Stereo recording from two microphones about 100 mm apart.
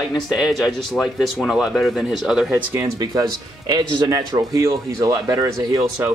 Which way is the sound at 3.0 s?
40° right (ahead or behind).